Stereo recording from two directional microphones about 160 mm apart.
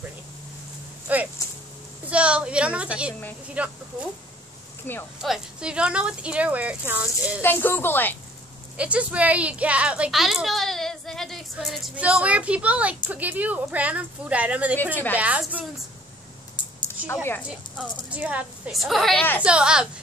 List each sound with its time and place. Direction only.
1.0 s a woman's voice: 10° right (ahead or behind)
4.9 s speech: 15° left (ahead or behind)
5.2 s a woman's voice: 5° right (ahead or behind)
7.4 s speech: 15° left (ahead or behind)
8.7 s a woman's voice: 10° right (ahead or behind)
16.6 s a sound: 30° left (ahead or behind)
17.1 s speech: 15° left (ahead or behind)
18.1 s a woman's voice: 10° right (ahead or behind)